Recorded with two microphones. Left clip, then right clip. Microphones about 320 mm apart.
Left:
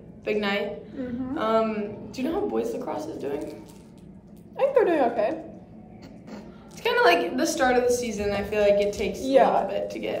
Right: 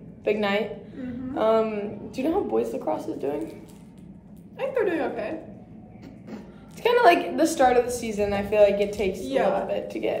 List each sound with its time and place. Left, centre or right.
0.2 s a woman's voice: centre
4.6 s a woman's voice: centre
6.8 s a woman's voice: centre
9.3 s a woman's voice: centre
9.7 s a woman's voice: centre